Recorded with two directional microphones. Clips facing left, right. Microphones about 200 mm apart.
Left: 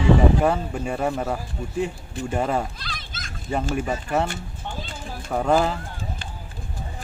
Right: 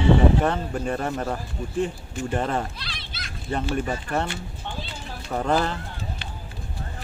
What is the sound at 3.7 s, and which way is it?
Speech, 5° left (ahead or behind).